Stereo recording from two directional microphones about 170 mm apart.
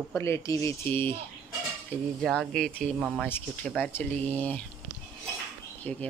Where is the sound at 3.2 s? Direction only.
10° left (ahead or behind).